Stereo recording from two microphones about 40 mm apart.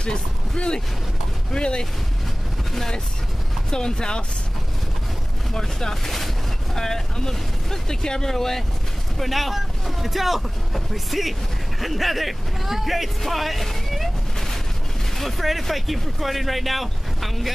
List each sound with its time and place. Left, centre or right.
0.0 s speech: left
2.7 s speech: centre
3.7 s speech: centre
5.5 s speech: centre
15.1 s speech: centre